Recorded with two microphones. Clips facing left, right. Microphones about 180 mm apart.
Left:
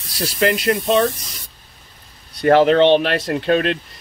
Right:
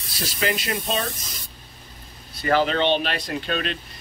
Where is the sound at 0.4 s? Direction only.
60° left (ahead or behind).